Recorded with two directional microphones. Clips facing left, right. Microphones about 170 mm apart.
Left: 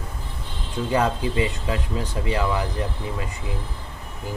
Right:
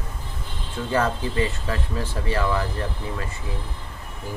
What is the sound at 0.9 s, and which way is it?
Speech, 15° left (ahead or behind).